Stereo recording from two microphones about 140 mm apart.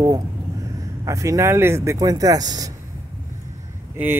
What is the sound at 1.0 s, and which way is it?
Speech, 20° right (ahead or behind).